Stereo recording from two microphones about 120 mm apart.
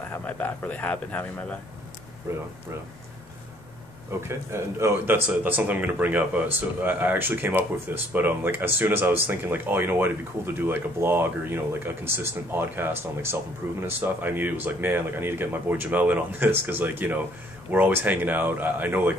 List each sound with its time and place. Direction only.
0.1 s speech: 15° left (ahead or behind)
2.3 s speech: 25° right (ahead or behind)
4.3 s a man's voice: 20° right (ahead or behind)